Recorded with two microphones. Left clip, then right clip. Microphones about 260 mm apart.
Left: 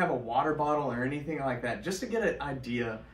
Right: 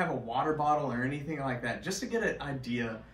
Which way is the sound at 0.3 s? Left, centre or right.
Centre.